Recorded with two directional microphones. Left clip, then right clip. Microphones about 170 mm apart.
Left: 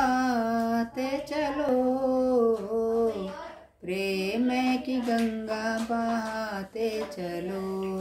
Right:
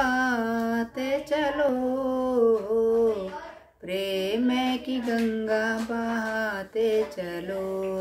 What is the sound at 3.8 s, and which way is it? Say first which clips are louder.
Speech: right 2 dB; 20° right (ahead or behind).